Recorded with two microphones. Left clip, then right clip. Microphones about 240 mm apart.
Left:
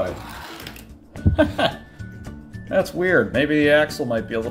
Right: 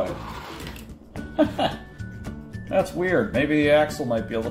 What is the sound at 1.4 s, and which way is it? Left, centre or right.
Speech, left.